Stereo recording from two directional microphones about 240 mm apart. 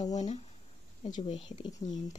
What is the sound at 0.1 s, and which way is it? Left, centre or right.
Speech, left.